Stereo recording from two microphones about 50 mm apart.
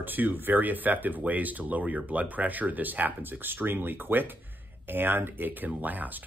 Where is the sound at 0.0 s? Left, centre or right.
Right.